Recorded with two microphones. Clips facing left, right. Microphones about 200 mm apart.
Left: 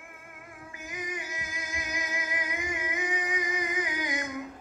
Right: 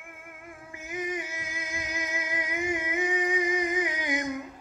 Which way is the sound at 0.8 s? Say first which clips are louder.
Right 5 dB; 25° right (ahead or behind).